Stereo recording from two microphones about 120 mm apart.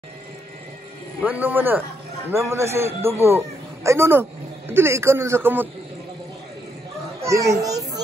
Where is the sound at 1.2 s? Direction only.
15° right (ahead or behind).